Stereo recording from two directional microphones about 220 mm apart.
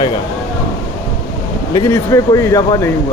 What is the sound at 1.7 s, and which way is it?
A man's voice, 15° left (ahead or behind).